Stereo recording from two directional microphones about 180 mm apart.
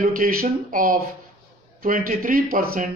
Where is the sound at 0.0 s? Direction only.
50° right (ahead or behind).